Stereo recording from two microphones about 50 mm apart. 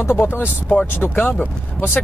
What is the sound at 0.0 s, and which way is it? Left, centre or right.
Speech, left.